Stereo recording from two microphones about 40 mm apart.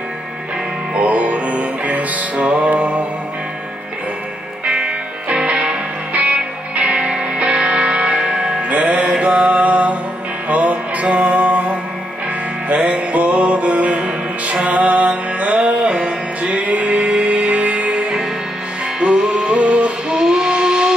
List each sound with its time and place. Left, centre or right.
0.9 s music: right
4.6 s music: right
8.2 s music: centre
8.6 s music: right
9.4 s mantra: right
10.5 s music: right
16.6 s music: right
19.4 s music: right
20.1 s a sound: centre